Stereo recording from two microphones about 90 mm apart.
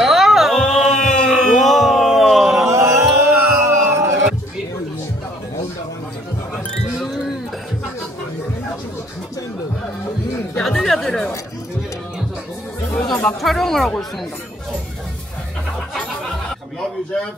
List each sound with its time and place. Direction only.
0.0 s music: 5° right (ahead or behind)
2.6 s a sound: 35° right (ahead or behind)
6.7 s music: centre (ahead or behind)
10.6 s chatter: 5° left (ahead or behind)
13.4 s speech: centre (ahead or behind)